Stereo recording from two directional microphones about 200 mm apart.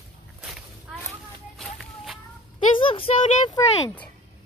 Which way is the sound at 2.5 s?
25° left (ahead or behind).